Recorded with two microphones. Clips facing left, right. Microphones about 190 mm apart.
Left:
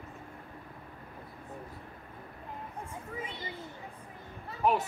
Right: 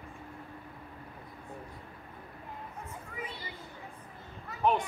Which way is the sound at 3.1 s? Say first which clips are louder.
Left 1 dB; 20° left (ahead or behind).